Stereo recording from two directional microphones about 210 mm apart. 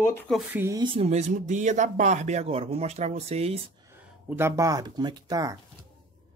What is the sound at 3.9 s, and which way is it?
Speech, 10° right (ahead or behind).